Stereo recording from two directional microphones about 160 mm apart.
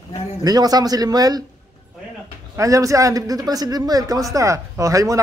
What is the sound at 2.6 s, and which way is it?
Speech, 20° right (ahead or behind).